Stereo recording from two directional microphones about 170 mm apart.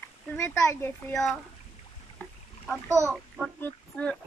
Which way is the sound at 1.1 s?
5° left (ahead or behind).